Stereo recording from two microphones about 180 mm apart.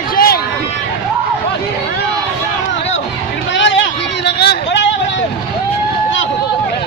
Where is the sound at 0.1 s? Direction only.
55° left (ahead or behind).